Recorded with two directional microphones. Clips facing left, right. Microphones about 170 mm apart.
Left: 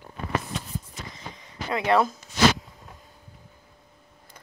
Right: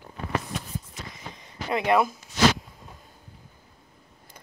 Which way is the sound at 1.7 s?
20° right (ahead or behind).